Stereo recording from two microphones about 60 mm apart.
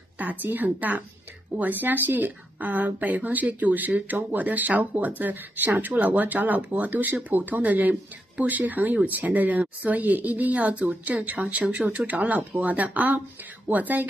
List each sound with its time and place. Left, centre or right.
0.2 s speech: right